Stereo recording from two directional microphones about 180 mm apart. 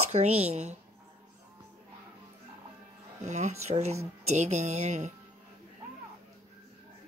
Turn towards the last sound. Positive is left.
turn(degrees=-40)  # may be behind; listen again after turning